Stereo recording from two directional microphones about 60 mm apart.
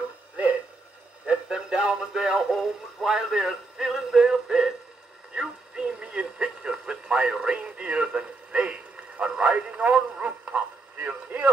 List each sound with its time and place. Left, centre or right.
1.2 s speech: centre
5.3 s radio: centre; by 11.5 s right